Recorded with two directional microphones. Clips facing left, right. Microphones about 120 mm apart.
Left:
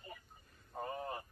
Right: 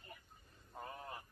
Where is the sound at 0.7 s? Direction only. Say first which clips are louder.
Left 7 dB; 25° left (ahead or behind).